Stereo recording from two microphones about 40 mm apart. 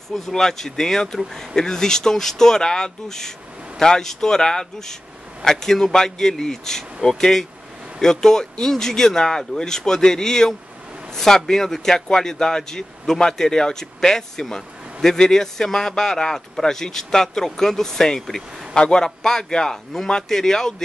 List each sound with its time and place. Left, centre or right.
0.3 s a man's voice: centre